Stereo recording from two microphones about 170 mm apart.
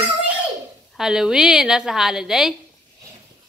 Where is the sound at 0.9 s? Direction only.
5° right (ahead or behind).